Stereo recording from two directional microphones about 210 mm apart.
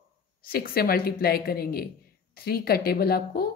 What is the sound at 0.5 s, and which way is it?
Speech, 45° left (ahead or behind).